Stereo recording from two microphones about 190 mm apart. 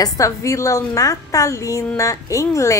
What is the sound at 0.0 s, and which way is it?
A woman's voice, 15° left (ahead or behind).